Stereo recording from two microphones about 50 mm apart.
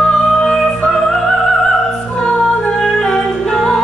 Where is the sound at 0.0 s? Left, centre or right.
Centre.